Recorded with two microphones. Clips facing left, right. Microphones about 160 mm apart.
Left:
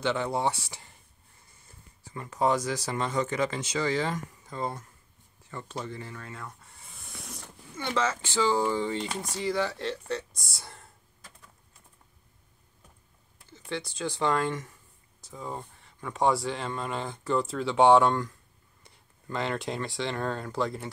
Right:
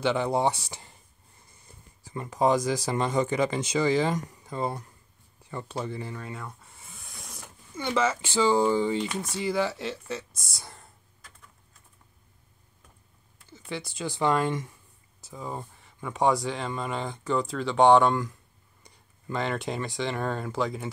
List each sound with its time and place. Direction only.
0.0 s speech: 15° right (ahead or behind)
1.7 s speech: 15° right (ahead or behind)
5.9 s a sound: 15° right (ahead or behind)
7.9 s speech: 10° right (ahead or behind)
13.5 s speech: 10° right (ahead or behind)